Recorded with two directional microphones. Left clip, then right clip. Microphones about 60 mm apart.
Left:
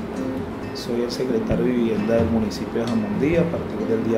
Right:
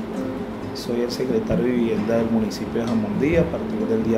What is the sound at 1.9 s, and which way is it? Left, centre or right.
Speech, right.